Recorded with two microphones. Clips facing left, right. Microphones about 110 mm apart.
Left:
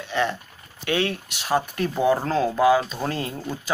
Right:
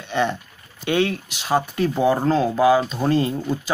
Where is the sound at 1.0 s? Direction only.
Centre (ahead or behind).